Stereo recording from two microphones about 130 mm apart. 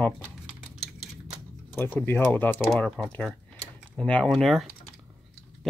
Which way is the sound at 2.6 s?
Centre (ahead or behind).